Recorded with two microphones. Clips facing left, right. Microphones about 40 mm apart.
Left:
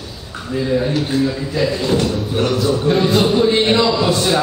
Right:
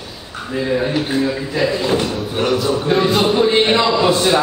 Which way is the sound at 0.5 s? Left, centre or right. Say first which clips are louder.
Even; centre.